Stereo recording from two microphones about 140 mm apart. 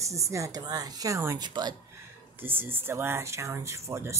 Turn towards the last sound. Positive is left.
turn(degrees=-20)  # may be behind; listen again after turning